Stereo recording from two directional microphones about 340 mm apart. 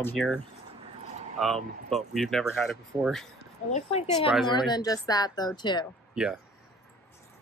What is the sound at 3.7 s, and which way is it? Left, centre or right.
Speech, centre.